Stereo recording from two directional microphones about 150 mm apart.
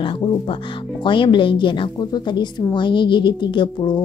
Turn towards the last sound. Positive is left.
turn(degrees=30)  # may be behind; listen again after turning